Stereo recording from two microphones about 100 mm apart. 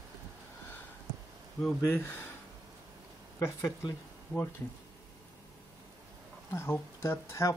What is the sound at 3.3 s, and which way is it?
Speech, 35° left (ahead or behind).